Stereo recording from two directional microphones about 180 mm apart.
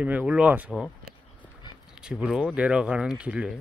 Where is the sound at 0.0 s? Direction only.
10° right (ahead or behind).